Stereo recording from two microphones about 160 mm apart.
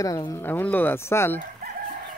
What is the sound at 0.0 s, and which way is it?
Speech, 20° left (ahead or behind).